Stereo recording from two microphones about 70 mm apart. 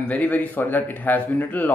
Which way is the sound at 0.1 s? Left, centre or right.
Left.